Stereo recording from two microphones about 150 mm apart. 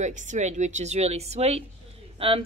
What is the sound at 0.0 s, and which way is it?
A woman's voice, 55° right (ahead or behind).